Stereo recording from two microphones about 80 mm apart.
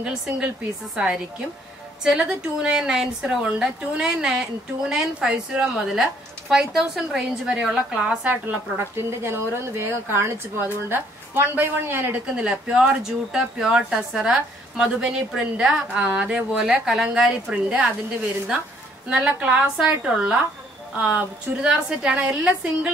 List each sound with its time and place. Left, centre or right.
0.0 s a woman's voice: centre
8.7 s a woman's voice: right
12.4 s a woman's voice: centre
19.0 s a woman's voice: centre